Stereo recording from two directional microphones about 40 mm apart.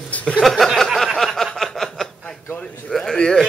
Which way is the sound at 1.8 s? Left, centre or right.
Centre.